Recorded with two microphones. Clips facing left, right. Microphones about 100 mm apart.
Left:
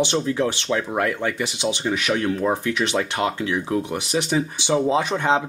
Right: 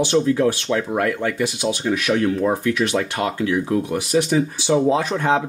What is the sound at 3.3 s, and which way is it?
Speech, 25° left (ahead or behind).